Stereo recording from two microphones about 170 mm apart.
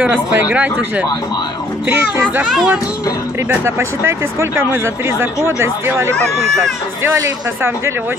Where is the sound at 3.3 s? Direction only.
15° right (ahead or behind).